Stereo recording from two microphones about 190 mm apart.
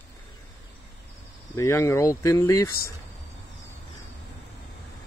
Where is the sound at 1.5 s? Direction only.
15° left (ahead or behind).